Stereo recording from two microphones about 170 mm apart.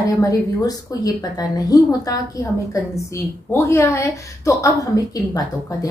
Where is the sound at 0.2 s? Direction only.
20° left (ahead or behind).